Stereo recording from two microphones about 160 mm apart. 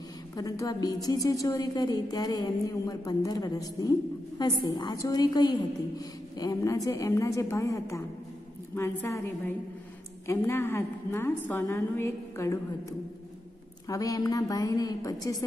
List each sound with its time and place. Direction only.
0.4 s a woman's voice: 20° left (ahead or behind)
13.8 s a woman's voice: 20° left (ahead or behind)